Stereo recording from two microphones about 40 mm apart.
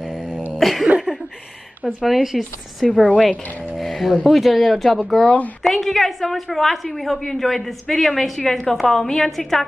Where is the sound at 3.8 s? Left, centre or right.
Centre.